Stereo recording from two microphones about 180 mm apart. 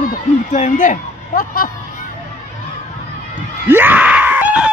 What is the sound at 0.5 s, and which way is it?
Speech, 45° left (ahead or behind).